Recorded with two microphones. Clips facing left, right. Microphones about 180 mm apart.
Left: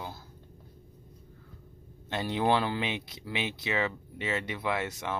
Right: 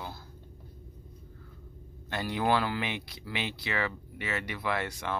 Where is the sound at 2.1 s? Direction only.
25° left (ahead or behind).